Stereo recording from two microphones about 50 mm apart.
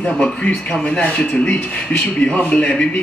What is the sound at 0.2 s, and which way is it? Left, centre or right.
A man's voice, left.